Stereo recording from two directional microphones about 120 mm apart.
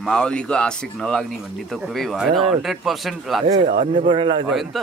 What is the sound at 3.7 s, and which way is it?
Speech, 50° right (ahead or behind).